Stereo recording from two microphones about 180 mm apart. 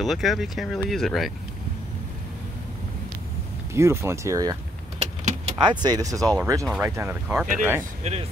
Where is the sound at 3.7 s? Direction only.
15° right (ahead or behind).